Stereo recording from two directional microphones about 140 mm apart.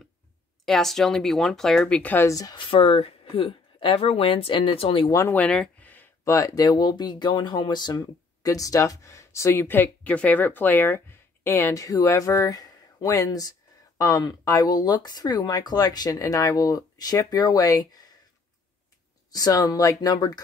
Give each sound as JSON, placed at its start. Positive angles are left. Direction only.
{"t": 0.7, "sound": "speech", "side_deg": 5}
{"t": 5.1, "sound": "speech", "side_deg": 20}
{"t": 5.4, "sound": "speech", "side_deg": 10}
{"t": 19.3, "sound": "speech", "side_deg": 25}